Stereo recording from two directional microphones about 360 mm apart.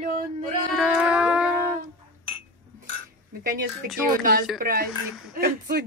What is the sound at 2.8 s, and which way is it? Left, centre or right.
Cutlery, right.